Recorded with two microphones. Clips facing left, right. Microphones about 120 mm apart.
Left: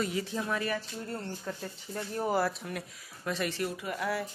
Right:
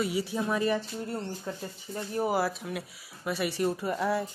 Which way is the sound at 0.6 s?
20° right (ahead or behind).